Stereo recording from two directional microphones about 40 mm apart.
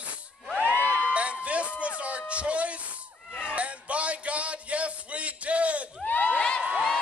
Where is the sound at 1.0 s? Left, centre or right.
Right.